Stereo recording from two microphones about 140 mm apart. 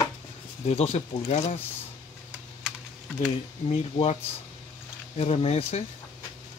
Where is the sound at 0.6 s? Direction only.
50° left (ahead or behind).